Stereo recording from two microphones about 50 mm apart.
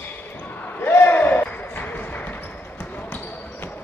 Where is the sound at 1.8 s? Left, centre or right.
Left.